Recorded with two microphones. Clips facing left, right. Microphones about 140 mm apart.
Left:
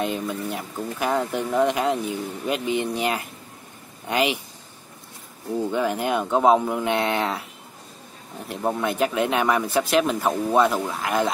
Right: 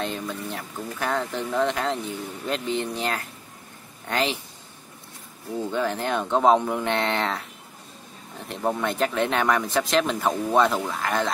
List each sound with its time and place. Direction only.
0.0 s speech: 15° left (ahead or behind)
5.6 s speech: 10° left (ahead or behind)
8.5 s speech: 5° left (ahead or behind)